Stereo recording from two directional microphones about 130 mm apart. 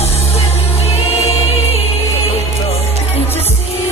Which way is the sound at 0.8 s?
50° left (ahead or behind).